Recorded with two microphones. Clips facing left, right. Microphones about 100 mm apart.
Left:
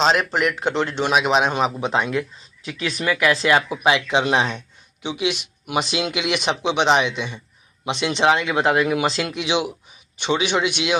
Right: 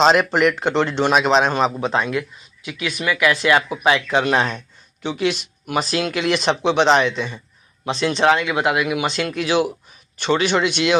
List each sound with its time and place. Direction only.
0.0 s a man's voice: centre (ahead or behind)